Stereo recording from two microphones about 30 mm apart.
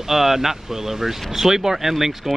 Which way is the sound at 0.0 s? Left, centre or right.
Centre.